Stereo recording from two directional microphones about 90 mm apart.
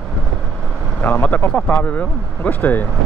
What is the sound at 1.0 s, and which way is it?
Speech, 20° left (ahead or behind).